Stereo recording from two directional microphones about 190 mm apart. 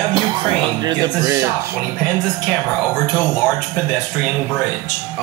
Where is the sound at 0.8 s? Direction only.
20° right (ahead or behind).